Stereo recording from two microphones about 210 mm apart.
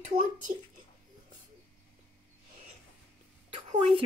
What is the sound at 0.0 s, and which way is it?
Speech, 30° right (ahead or behind).